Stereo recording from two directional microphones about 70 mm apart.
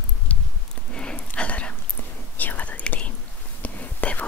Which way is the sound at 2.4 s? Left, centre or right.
Left.